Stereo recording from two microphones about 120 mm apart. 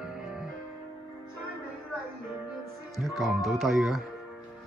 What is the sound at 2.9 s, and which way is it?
Speech, centre (ahead or behind).